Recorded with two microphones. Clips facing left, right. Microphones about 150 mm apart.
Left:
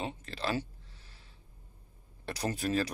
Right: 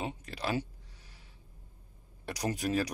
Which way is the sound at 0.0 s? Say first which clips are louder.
Even; 10° right (ahead or behind).